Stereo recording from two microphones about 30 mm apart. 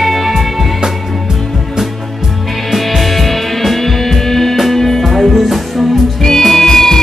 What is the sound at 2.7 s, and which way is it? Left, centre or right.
Music, centre.